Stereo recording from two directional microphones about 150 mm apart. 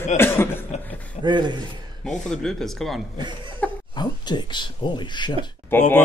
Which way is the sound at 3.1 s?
30° right (ahead or behind).